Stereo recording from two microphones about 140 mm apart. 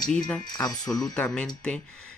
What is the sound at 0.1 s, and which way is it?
Speech, 5° left (ahead or behind).